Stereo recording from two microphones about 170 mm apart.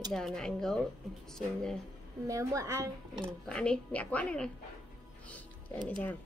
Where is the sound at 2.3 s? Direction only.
20° right (ahead or behind).